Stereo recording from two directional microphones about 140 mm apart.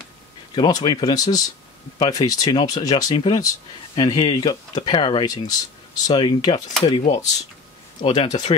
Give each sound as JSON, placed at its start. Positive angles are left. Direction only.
{"t": 0.6, "sound": "speech", "side_deg": 30}
{"t": 7.0, "sound": "speech", "side_deg": 55}
{"t": 8.0, "sound": "speech", "side_deg": 35}